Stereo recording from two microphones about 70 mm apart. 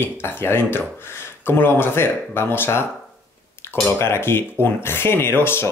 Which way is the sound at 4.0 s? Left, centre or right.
Left.